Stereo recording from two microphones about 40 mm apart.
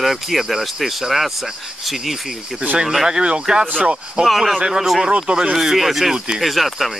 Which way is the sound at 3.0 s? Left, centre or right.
Right.